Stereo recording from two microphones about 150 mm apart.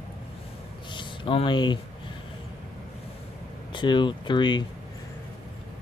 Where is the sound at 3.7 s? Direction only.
30° left (ahead or behind).